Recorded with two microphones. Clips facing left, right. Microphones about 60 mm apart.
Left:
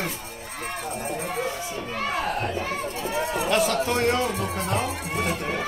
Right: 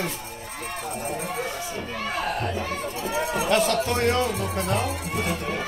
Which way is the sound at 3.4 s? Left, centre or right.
Centre.